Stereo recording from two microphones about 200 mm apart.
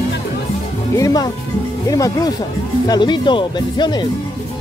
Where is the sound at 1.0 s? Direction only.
20° left (ahead or behind).